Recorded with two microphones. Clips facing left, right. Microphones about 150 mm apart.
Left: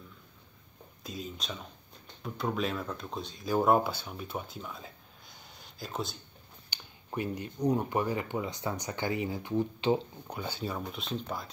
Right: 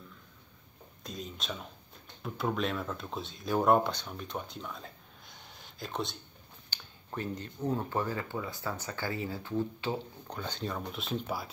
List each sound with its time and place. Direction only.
1.0 s speech: centre (ahead or behind)
6.7 s speech: 15° left (ahead or behind)
10.2 s speech: 10° left (ahead or behind)